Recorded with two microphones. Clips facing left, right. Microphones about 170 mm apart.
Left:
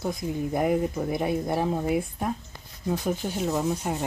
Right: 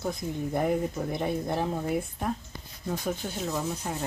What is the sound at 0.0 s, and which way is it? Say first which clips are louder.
Speech: left 3 dB; 5° left (ahead or behind).